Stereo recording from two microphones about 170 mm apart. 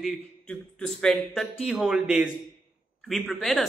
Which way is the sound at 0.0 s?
5° left (ahead or behind).